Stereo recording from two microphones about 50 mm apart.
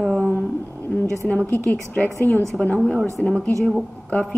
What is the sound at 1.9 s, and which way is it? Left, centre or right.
Speech, left.